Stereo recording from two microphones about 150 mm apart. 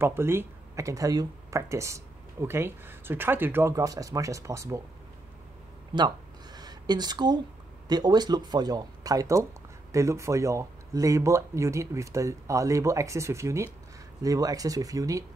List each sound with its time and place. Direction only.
0.0 s speech: 15° right (ahead or behind)
5.9 s a sound: 30° right (ahead or behind)
7.9 s speech: 25° right (ahead or behind)